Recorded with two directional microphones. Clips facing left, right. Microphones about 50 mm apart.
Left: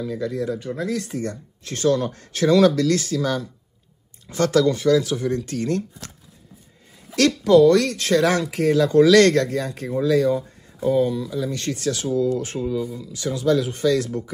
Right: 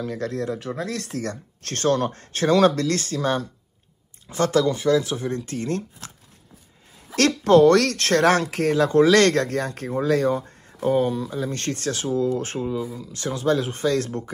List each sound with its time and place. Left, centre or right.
0.0 s speech: right
1.1 s speech: right
4.3 s speech: right
7.2 s speech: right
8.7 s speech: right
12.5 s speech: right
13.1 s speech: right